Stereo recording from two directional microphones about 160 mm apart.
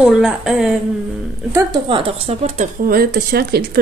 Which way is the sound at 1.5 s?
20° right (ahead or behind).